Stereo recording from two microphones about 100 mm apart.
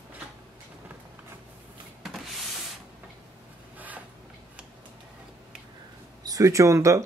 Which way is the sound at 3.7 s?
15° right (ahead or behind).